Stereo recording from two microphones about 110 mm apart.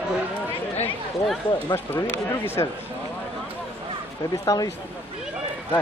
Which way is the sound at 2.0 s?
25° left (ahead or behind).